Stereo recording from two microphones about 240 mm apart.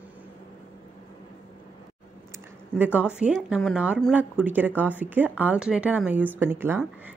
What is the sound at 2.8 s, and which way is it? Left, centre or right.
Speech, centre.